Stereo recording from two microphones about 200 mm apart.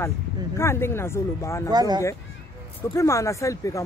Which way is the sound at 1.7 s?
20° right (ahead or behind).